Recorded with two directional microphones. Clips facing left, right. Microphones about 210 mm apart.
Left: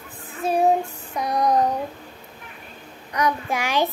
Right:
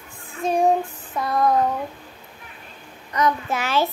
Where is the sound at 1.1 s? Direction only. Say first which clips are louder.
Even; 15° left (ahead or behind).